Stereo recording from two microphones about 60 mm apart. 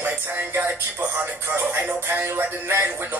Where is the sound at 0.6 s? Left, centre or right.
Right.